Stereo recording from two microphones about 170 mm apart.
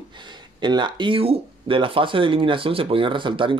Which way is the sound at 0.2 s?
25° right (ahead or behind).